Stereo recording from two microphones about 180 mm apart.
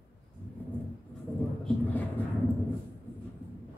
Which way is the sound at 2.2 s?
10° left (ahead or behind).